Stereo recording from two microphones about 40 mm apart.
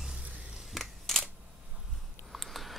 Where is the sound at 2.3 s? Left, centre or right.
Centre.